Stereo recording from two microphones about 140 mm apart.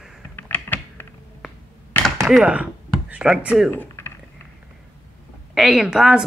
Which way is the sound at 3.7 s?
15° left (ahead or behind).